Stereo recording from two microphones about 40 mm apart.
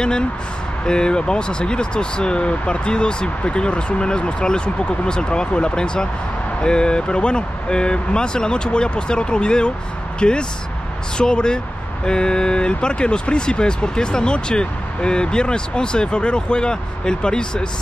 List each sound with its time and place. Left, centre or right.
0.8 s speech: left